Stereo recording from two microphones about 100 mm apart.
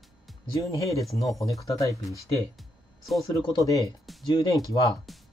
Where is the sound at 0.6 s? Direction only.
35° left (ahead or behind).